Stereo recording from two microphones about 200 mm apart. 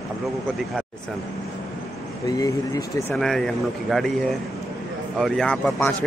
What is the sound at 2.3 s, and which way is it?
Speech, 15° left (ahead or behind).